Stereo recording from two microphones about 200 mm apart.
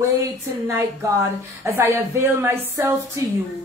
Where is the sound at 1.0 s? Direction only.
15° right (ahead or behind).